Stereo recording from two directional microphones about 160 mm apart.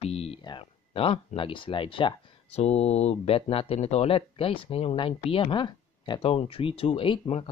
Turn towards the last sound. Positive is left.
turn(degrees=35)  # may be behind; listen again after turning